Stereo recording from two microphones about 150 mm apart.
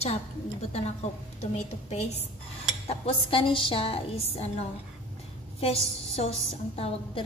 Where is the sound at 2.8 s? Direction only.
40° left (ahead or behind).